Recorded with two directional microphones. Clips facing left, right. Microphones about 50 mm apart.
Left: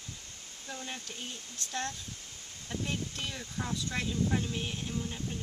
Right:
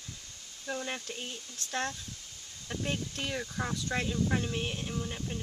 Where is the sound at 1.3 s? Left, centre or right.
Left.